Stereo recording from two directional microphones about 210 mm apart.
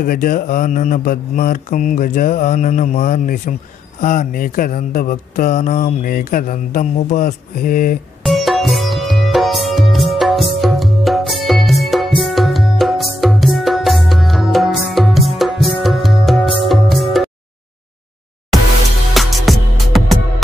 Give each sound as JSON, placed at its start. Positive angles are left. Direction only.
{"t": 0.0, "sound": "speech", "side_deg": 40}
{"t": 8.2, "sound": "music", "side_deg": 0}
{"t": 10.6, "sound": "tabla", "side_deg": 0}
{"t": 19.1, "sound": "music", "side_deg": 0}